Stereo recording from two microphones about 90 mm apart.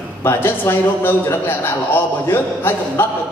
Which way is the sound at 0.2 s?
25° left (ahead or behind).